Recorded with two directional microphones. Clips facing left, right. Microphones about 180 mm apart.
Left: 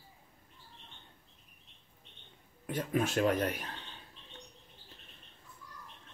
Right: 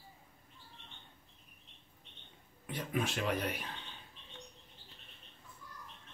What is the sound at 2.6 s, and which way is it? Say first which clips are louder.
Speech: left 4 dB; 45° left (ahead or behind).